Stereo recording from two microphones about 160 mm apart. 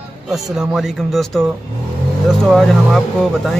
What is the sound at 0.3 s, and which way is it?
Speech, centre (ahead or behind).